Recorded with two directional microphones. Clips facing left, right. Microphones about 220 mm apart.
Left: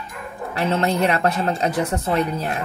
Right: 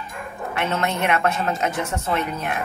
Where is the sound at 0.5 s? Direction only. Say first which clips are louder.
Left 4 dB; 35° left (ahead or behind).